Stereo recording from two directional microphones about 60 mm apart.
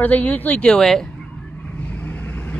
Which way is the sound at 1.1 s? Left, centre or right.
Left.